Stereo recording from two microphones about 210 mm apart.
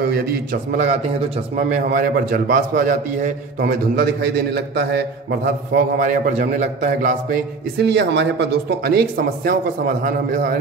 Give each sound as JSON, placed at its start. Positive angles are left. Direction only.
{"t": 0.7, "sound": "a man's voice", "side_deg": -35}
{"t": 4.6, "sound": "speech", "side_deg": -50}
{"t": 5.9, "sound": "a man's voice", "side_deg": -40}
{"t": 7.8, "sound": "speech", "side_deg": -55}